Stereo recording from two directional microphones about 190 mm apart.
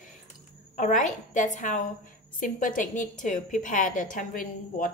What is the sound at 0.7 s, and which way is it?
A woman's voice, 40° left (ahead or behind).